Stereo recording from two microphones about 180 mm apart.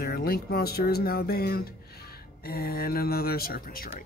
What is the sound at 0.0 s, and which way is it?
Speech, 55° left (ahead or behind).